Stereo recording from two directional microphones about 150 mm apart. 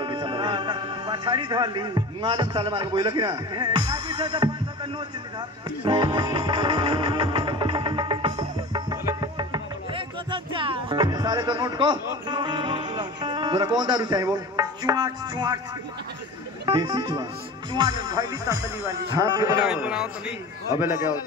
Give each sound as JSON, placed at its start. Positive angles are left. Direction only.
{"t": 0.0, "sound": "speech", "side_deg": -35}
{"t": 5.9, "sound": "music", "side_deg": -30}
{"t": 8.9, "sound": "speech", "side_deg": -25}
{"t": 16.6, "sound": "speech", "side_deg": -30}
{"t": 19.6, "sound": "a man's voice", "side_deg": -5}